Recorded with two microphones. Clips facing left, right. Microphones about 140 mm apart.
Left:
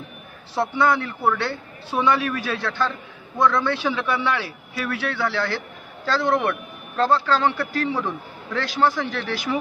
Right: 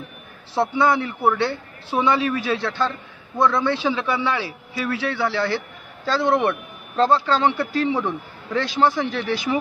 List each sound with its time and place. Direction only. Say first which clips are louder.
0.6 s a man's voice: right 1 dB; 15° right (ahead or behind)